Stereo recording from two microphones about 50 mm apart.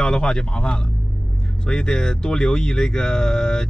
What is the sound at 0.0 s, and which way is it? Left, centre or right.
A man's voice, centre.